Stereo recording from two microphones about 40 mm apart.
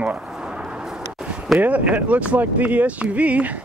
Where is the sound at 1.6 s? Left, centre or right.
Right.